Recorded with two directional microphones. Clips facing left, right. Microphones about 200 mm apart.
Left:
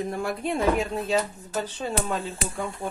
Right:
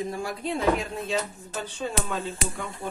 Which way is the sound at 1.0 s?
35° left (ahead or behind).